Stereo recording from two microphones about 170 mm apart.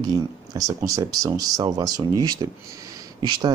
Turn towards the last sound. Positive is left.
turn(degrees=-25)  # may be behind; listen again after turning